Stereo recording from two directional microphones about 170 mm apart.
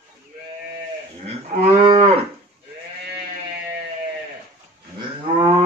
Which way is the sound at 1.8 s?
30° right (ahead or behind).